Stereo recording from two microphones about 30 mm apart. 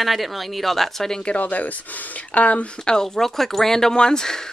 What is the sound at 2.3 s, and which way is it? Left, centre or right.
Speech, left.